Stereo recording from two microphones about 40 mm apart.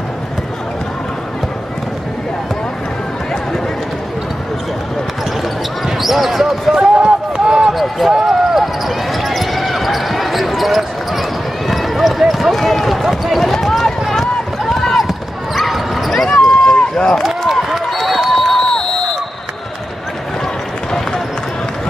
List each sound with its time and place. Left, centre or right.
5.9 s basketball bounce: centre
6.8 s run: right
7.7 s basketball bounce: centre
12.5 s run: centre
14.0 s basketball bounce: centre
16.9 s run: centre
17.6 s a sound: centre